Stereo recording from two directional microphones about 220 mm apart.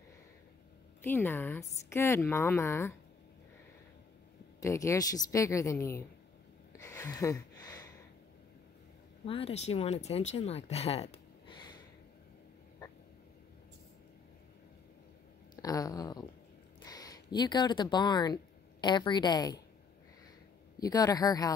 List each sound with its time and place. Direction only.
1.0 s a woman's voice: 10° left (ahead or behind)
4.6 s a woman's voice: 15° left (ahead or behind)
6.7 s a sound: 15° left (ahead or behind)
9.2 s speech: 25° left (ahead or behind)
15.5 s a sound: 15° left (ahead or behind)
16.8 s speech: 15° left (ahead or behind)
20.8 s a woman's voice: 15° left (ahead or behind)